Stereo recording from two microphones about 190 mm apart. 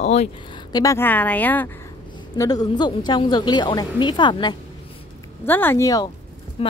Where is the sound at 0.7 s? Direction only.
15° left (ahead or behind).